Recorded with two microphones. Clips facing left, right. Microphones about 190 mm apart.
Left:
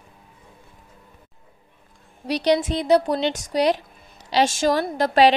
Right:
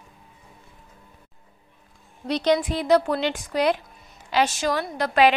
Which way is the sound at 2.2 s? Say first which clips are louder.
Left 1 dB; 15° left (ahead or behind).